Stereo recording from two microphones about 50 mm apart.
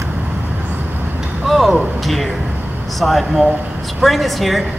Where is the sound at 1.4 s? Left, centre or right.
Centre.